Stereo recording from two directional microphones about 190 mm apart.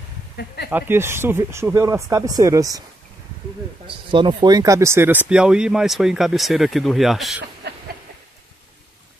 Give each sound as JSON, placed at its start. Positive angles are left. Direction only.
{"t": 0.7, "sound": "speech", "side_deg": -10}
{"t": 3.8, "sound": "speech", "side_deg": -25}
{"t": 7.6, "sound": "a sound", "side_deg": -60}